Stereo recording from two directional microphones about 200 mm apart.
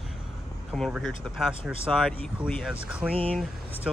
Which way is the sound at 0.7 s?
Centre (ahead or behind).